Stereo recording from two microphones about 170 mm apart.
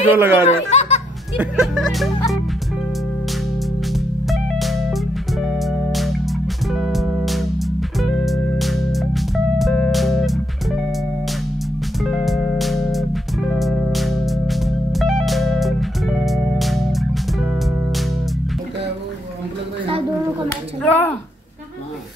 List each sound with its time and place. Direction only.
0.1 s speech: 10° right (ahead or behind)
0.5 s laughter: 40° left (ahead or behind)
1.4 s speech: centre (ahead or behind)
3.9 s music: centre (ahead or behind)
12.0 s music: centre (ahead or behind)
20.8 s a sound: 10° left (ahead or behind)